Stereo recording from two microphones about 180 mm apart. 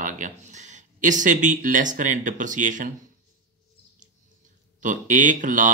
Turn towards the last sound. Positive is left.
turn(degrees=-45)  # may be behind; listen again after turning